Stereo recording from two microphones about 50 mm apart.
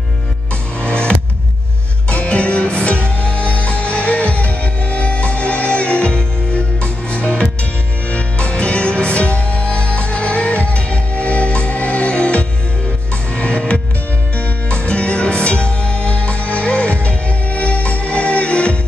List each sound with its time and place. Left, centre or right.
0.7 s music: left